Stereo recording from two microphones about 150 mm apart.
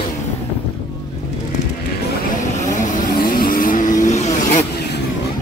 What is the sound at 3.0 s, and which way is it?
Vehicle, 75° left (ahead or behind).